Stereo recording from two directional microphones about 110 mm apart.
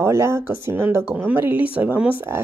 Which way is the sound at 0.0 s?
25° right (ahead or behind).